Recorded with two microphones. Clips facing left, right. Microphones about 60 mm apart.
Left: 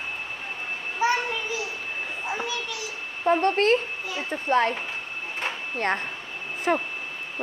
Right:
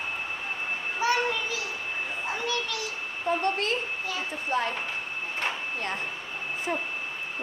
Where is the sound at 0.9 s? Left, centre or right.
Left.